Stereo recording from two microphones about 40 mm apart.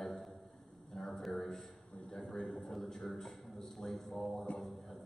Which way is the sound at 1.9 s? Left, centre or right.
Centre.